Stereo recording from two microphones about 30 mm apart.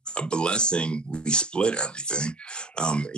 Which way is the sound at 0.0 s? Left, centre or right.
Left.